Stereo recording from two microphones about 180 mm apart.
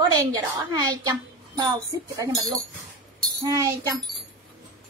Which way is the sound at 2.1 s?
20° right (ahead or behind).